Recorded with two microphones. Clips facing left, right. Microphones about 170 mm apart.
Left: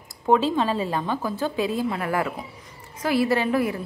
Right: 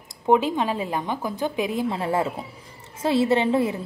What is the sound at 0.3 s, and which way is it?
A woman's voice, 15° right (ahead or behind).